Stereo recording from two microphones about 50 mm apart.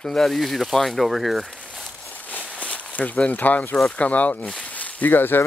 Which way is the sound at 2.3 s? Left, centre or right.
Left.